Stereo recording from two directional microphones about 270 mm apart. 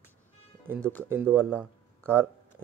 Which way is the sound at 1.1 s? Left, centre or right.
Centre.